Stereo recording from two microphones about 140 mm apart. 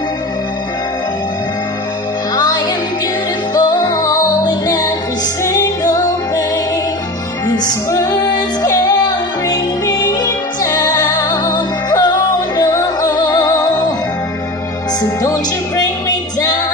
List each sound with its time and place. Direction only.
2.3 s music: 25° left (ahead or behind)
7.4 s music: 25° left (ahead or behind)
15.0 s music: 25° left (ahead or behind)